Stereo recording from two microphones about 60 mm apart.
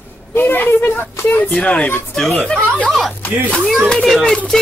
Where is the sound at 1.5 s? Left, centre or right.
Centre.